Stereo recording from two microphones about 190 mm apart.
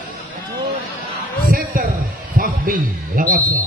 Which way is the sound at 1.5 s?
50° right (ahead or behind).